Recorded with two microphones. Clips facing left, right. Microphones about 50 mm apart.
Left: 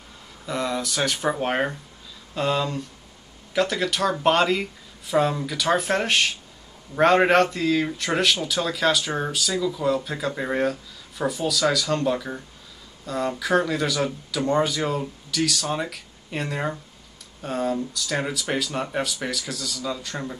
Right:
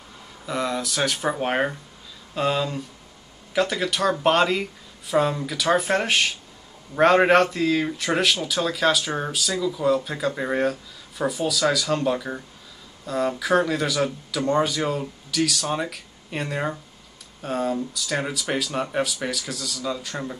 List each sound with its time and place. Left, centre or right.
0.5 s speech: centre